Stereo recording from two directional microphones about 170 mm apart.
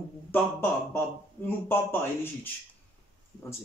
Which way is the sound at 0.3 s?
10° left (ahead or behind).